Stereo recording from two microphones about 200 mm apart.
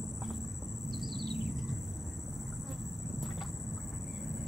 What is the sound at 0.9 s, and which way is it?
Bird, centre (ahead or behind).